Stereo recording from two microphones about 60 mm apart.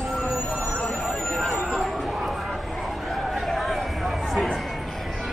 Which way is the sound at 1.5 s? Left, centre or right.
Centre.